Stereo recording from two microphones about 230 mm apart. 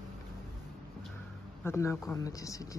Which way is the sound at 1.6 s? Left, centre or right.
Centre.